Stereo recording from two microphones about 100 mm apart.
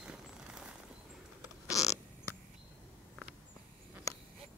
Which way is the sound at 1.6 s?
35° left (ahead or behind).